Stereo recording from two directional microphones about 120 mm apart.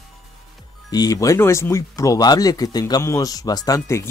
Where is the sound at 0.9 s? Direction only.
30° left (ahead or behind).